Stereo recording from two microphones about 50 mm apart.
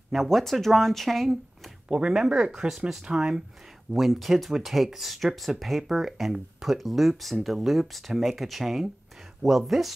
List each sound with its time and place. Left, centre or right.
0.1 s speech: centre
1.9 s speech: centre
3.9 s speech: centre